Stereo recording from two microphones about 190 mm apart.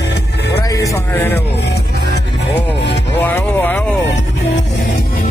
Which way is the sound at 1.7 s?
60° left (ahead or behind).